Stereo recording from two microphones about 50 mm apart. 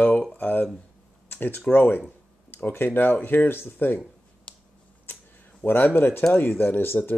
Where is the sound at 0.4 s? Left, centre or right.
Left.